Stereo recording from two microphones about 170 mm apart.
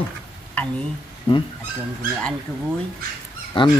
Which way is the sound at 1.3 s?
30° left (ahead or behind).